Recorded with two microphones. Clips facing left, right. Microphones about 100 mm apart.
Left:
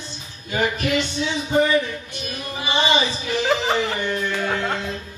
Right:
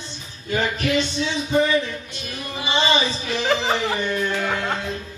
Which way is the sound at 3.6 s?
20° right (ahead or behind).